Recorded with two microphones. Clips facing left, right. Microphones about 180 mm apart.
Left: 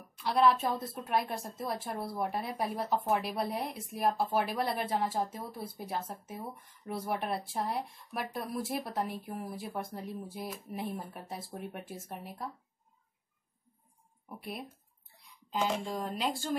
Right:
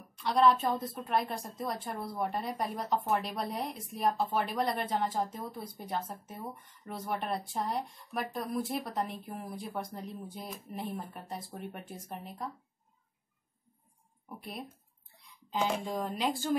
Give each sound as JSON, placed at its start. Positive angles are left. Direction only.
{"t": 0.1, "sound": "a woman's voice", "side_deg": 5}
{"t": 15.5, "sound": "speech", "side_deg": 0}